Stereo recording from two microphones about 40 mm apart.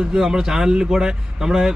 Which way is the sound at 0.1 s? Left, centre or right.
Centre.